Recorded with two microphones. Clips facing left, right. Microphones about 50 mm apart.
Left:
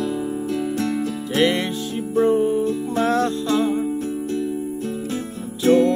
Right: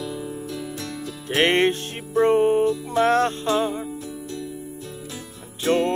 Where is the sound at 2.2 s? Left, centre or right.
Right.